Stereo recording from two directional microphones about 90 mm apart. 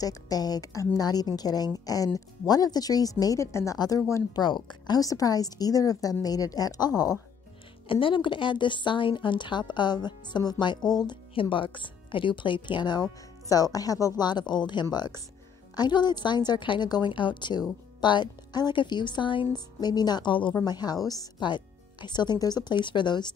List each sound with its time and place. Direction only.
0.0 s a woman's voice: 45° left (ahead or behind)
3.7 s a woman's voice: 50° left (ahead or behind)
7.9 s a woman's voice: 75° left (ahead or behind); by 11.1 s 50° left (ahead or behind)
11.3 s a woman's voice: 75° left (ahead or behind)
19.5 s a woman's voice: 50° left (ahead or behind); by 20.5 s 65° left (ahead or behind)
20.5 s a woman's voice: 50° left (ahead or behind)
21.4 s a woman's voice: 55° left (ahead or behind)